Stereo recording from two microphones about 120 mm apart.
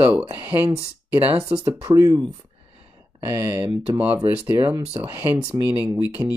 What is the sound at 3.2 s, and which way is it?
Speech, 20° right (ahead or behind).